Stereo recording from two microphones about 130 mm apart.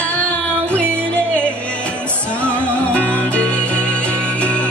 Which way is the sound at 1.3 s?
10° left (ahead or behind).